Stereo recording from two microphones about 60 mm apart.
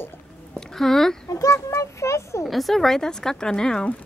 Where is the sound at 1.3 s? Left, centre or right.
Left.